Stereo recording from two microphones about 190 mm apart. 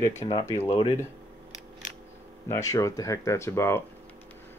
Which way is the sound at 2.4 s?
15° left (ahead or behind).